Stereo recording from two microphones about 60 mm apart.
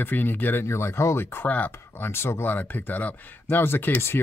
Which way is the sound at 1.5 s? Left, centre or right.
Left.